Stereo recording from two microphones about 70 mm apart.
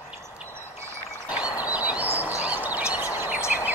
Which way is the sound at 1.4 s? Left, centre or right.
Right.